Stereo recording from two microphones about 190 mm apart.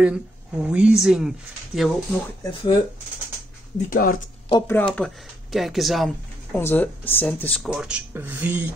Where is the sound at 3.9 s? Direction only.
50° left (ahead or behind).